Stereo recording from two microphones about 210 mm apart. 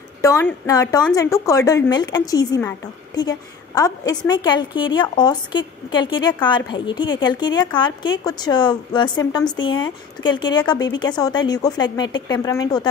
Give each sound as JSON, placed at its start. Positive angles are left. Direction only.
{"t": 0.2, "sound": "a woman's voice", "side_deg": 15}